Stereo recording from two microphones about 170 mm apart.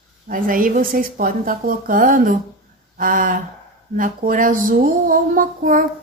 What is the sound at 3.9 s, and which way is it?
A woman's voice, 55° right (ahead or behind).